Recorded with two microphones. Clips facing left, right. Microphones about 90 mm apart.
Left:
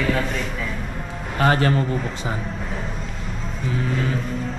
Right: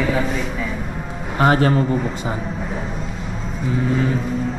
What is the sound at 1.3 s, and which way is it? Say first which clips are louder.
Speech: right 3 dB; 30° right (ahead or behind).